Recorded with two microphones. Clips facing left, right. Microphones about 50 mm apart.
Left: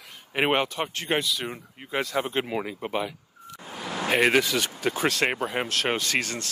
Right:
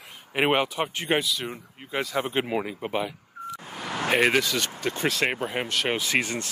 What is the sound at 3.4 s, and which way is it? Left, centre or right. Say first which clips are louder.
Vehicle: right 4 dB; right.